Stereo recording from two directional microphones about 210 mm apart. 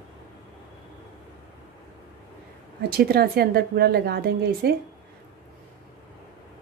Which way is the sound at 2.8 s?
50° right (ahead or behind).